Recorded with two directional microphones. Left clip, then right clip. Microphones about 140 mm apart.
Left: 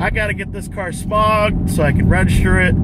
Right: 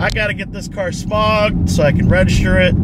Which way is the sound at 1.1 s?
20° right (ahead or behind).